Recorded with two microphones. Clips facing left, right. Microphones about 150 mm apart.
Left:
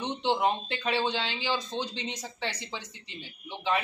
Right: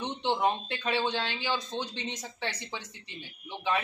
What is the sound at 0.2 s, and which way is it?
Speech, 10° left (ahead or behind).